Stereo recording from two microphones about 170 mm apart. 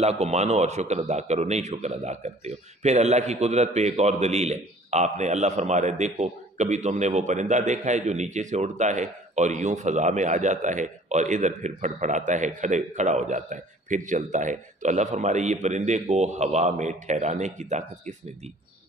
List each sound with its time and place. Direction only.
0.0 s a man's voice: 40° right (ahead or behind)